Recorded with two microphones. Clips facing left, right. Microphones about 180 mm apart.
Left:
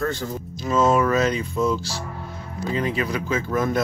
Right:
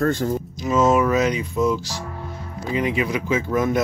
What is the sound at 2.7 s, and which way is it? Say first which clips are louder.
Speech: right 2 dB; 15° right (ahead or behind).